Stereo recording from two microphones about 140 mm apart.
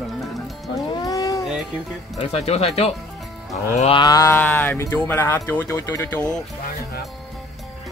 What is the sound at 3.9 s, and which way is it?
Livestock, 30° left (ahead or behind).